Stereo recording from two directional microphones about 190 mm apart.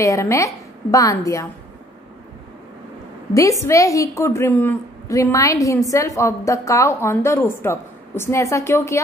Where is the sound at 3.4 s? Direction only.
15° left (ahead or behind).